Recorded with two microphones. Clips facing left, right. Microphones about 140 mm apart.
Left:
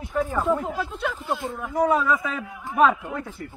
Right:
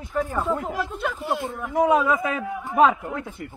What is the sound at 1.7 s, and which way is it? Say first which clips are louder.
Speech: right 2 dB; 20° right (ahead or behind).